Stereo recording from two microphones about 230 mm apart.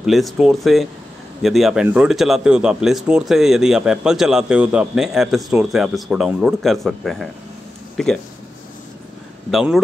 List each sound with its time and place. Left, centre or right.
0.0 s speech: centre
9.5 s speech: centre